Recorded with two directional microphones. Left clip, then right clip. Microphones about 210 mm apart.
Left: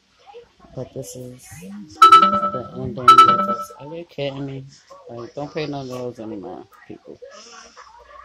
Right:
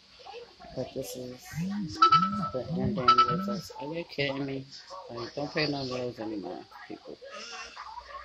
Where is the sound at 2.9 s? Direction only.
50° left (ahead or behind).